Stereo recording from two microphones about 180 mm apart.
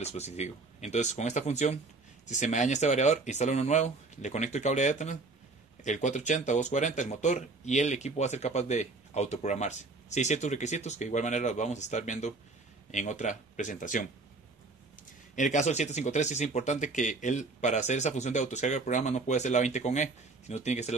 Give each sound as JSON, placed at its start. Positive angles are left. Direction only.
{"t": 0.0, "sound": "speech", "side_deg": 35}
{"t": 15.3, "sound": "speech", "side_deg": 45}